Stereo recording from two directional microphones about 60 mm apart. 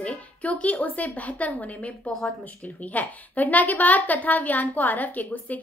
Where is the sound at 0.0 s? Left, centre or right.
Left.